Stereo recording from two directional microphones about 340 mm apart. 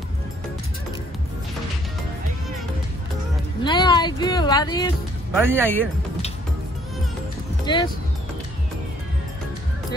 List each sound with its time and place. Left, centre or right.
3.6 s speech: centre
5.3 s speech: centre
7.6 s speech: centre